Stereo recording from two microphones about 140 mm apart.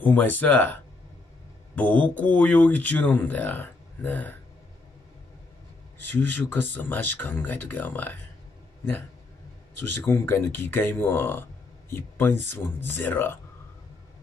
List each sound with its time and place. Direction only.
0.0 s speech: 10° left (ahead or behind)
1.8 s speech: 10° left (ahead or behind)
6.1 s speech: 15° left (ahead or behind)
9.8 s speech: 15° left (ahead or behind)